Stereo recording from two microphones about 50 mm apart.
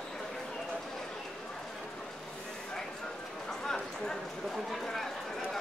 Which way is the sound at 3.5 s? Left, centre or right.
Centre.